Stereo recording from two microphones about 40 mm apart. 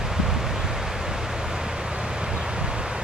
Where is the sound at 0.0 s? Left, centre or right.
Centre.